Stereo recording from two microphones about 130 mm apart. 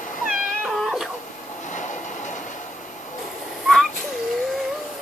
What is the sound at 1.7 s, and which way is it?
Train, 70° left (ahead or behind).